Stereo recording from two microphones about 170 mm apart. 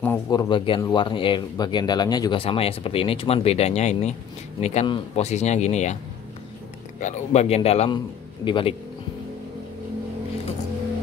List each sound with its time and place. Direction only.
0.3 s speech: 25° left (ahead or behind); by 5.9 s 40° left (ahead or behind)
7.0 s speech: 45° left (ahead or behind)